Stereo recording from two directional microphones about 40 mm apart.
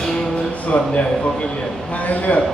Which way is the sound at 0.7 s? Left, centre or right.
Left.